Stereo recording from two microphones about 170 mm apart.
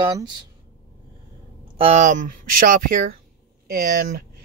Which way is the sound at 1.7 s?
40° right (ahead or behind).